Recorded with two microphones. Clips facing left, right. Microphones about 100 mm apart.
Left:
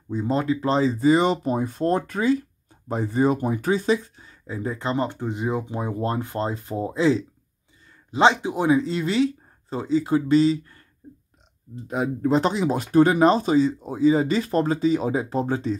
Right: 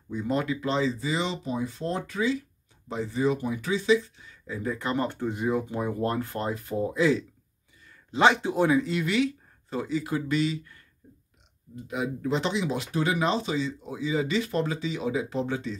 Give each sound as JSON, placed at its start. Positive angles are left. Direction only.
{"t": 0.1, "sound": "speech", "side_deg": 30}